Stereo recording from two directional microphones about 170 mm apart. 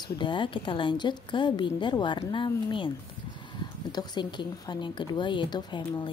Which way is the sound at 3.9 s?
25° left (ahead or behind).